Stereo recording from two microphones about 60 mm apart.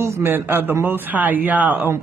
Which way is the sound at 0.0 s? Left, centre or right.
Right.